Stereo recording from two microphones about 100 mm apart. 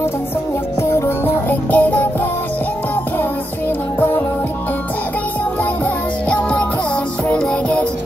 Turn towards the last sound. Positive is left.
turn(degrees=10)  # may be behind; listen again after turning